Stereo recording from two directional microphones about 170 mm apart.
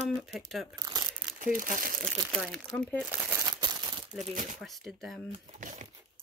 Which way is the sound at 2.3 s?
Centre (ahead or behind).